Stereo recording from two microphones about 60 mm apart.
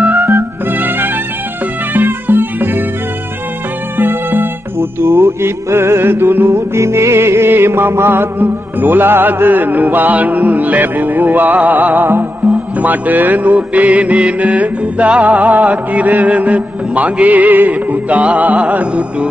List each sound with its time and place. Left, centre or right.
0.0 s music: right
4.0 s music: right